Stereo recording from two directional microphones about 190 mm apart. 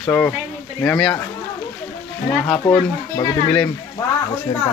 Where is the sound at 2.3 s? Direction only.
5° left (ahead or behind).